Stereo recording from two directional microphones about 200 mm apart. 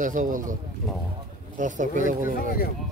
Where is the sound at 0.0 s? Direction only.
40° right (ahead or behind).